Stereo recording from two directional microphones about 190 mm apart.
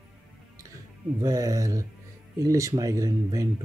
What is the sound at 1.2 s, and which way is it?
Speech, 20° right (ahead or behind).